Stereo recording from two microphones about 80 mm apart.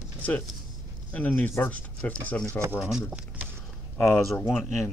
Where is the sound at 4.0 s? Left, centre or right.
Left.